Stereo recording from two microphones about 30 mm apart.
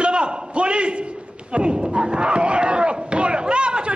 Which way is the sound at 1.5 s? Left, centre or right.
Right.